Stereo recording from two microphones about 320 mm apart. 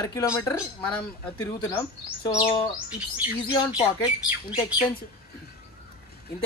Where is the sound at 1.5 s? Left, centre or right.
Centre.